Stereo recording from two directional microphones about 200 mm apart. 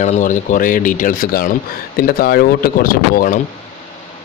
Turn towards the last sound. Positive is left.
turn(degrees=45)  # may be behind; listen again after turning